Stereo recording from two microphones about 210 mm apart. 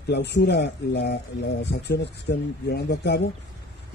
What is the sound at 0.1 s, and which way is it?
Speech, 55° left (ahead or behind).